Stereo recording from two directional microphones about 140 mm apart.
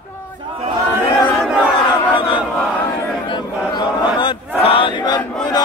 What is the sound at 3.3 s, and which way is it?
Chant, 35° left (ahead or behind).